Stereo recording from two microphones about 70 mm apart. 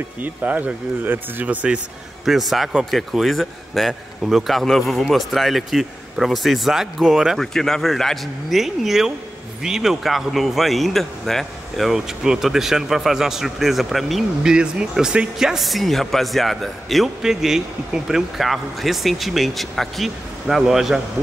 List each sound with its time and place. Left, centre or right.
0.2 s speech: right
2.2 s speech: centre
7.3 s speech: centre
14.5 s speech: centre